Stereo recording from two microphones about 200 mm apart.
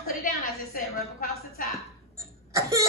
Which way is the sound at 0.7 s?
45° left (ahead or behind).